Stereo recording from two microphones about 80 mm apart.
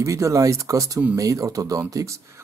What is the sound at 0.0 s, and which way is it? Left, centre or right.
Speech, right.